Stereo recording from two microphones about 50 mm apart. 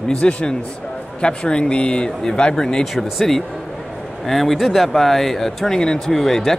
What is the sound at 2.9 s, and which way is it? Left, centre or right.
A man's voice, centre.